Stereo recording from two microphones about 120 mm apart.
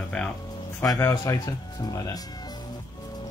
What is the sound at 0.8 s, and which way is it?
Speech, 25° left (ahead or behind).